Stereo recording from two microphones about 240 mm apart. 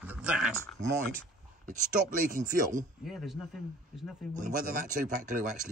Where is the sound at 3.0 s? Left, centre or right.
Centre.